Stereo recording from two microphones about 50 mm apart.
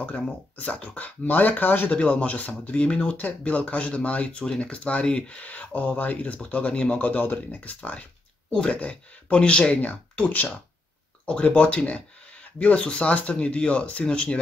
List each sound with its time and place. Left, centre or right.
0.6 s speech: left
1.9 s speech: left
7.1 s speech: left